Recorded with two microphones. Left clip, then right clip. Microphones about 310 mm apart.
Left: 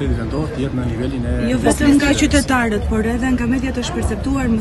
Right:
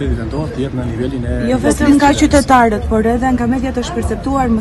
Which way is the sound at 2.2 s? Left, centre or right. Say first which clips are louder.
Right 7 dB; centre.